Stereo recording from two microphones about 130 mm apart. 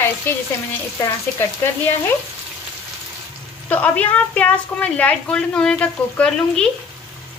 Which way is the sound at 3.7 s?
10° left (ahead or behind).